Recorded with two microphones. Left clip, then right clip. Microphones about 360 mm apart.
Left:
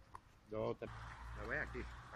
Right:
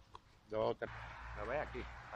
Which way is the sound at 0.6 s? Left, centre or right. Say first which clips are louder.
Right 5 dB; right.